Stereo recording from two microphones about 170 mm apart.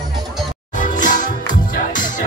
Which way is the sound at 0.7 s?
50° left (ahead or behind).